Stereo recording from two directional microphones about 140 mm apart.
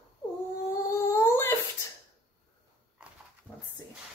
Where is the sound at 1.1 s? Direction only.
20° left (ahead or behind).